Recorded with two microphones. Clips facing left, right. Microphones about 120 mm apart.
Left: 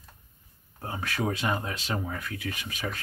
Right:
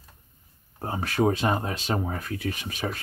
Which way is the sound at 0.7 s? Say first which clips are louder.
Right 6 dB; 35° right (ahead or behind).